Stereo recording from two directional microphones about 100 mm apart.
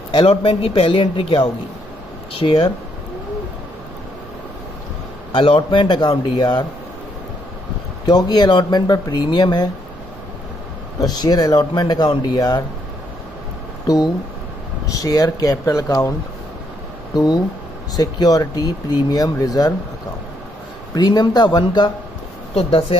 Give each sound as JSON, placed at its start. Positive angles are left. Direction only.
{"t": 0.1, "sound": "a man's voice", "side_deg": 65}
{"t": 5.3, "sound": "speech", "side_deg": 55}
{"t": 8.0, "sound": "speech", "side_deg": 45}
{"t": 11.0, "sound": "speech", "side_deg": 40}
{"t": 13.8, "sound": "speech", "side_deg": 40}
{"t": 17.1, "sound": "speech", "side_deg": 45}
{"t": 20.9, "sound": "speech", "side_deg": 45}
{"t": 22.5, "sound": "speech", "side_deg": 75}